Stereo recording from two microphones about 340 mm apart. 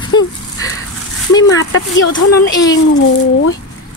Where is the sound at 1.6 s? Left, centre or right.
Left.